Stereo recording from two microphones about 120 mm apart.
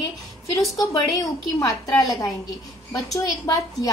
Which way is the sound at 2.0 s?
30° left (ahead or behind).